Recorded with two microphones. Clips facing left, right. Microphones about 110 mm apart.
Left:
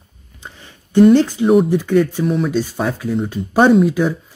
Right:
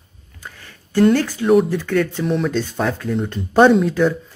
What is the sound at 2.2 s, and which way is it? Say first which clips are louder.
Speech: left 2 dB; centre (ahead or behind).